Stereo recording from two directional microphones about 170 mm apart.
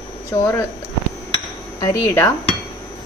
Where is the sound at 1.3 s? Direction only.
20° left (ahead or behind).